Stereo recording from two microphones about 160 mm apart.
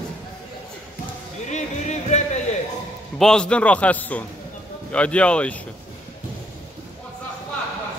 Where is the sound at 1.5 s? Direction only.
45° left (ahead or behind).